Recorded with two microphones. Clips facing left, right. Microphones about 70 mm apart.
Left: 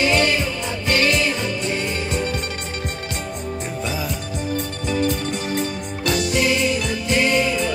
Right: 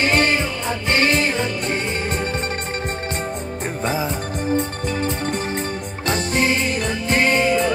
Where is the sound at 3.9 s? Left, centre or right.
Right.